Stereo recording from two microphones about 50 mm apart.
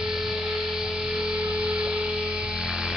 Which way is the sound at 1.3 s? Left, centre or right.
Right.